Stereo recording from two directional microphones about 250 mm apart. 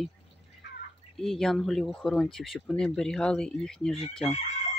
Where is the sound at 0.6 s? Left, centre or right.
Left.